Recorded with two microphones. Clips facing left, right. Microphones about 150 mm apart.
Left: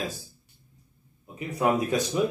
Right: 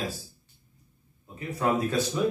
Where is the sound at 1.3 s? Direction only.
15° left (ahead or behind).